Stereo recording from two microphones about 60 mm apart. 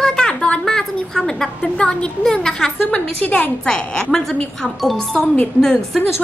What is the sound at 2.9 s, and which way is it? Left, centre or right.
Speech, left.